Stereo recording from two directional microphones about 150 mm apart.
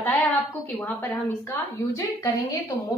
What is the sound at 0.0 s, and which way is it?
A woman's voice, 10° left (ahead or behind).